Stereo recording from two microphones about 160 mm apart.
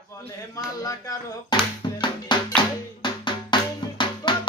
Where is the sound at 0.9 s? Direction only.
25° left (ahead or behind).